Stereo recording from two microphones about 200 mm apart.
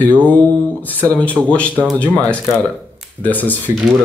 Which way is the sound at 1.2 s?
5° left (ahead or behind).